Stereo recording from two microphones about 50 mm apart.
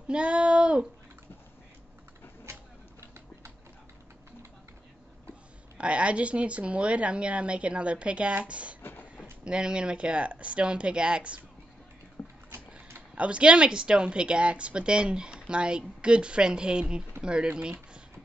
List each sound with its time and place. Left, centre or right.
0.1 s a sound: right
5.8 s a woman's voice: right
13.1 s a woman's voice: right